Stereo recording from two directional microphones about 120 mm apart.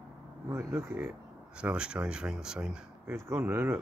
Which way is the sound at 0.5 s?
20° right (ahead or behind).